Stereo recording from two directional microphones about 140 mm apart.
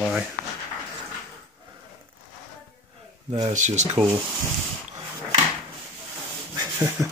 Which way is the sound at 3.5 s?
60° right (ahead or behind).